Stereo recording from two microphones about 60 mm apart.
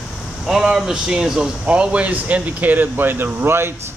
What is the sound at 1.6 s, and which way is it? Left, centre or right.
Speech, right.